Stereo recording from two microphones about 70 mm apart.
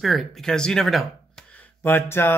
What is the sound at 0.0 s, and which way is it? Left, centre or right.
Speech, centre.